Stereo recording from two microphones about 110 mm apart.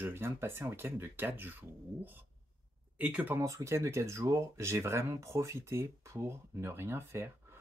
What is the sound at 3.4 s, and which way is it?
Speech, 25° right (ahead or behind).